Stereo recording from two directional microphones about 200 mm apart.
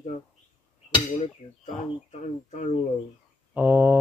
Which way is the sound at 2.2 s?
35° left (ahead or behind).